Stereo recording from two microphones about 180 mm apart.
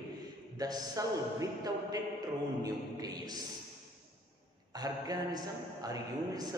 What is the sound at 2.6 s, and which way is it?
Speech, 20° right (ahead or behind).